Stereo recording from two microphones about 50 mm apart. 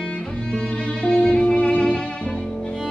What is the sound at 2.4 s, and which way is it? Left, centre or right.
Violin, centre.